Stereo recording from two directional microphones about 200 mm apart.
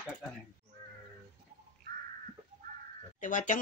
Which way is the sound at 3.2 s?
40° left (ahead or behind).